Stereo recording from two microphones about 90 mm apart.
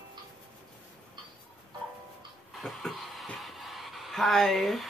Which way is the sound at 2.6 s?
Centre (ahead or behind).